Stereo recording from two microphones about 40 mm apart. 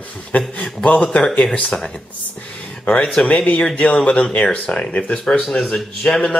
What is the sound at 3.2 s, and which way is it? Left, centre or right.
Speech, left.